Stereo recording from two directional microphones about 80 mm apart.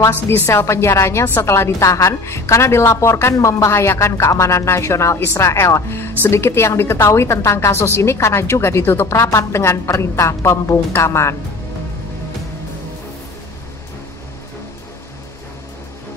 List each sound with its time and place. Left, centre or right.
0.1 s a woman's voice: left